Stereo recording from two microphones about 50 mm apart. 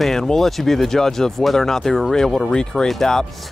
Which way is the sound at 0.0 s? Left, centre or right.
Centre.